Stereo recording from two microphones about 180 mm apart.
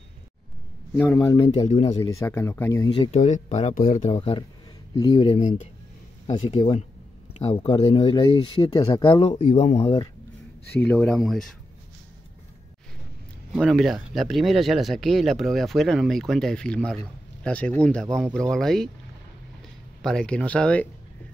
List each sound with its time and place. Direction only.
1.2 s speech: 25° left (ahead or behind)
1.5 s speech: 35° left (ahead or behind)
2.0 s speech: 15° left (ahead or behind)
3.0 s speech: 40° left (ahead or behind)
4.1 s speech: 30° left (ahead or behind)
9.5 s speech: 40° left (ahead or behind)
10.8 s speech: 10° left (ahead or behind)
13.5 s speech: centre (ahead or behind)
20.0 s speech: 5° left (ahead or behind)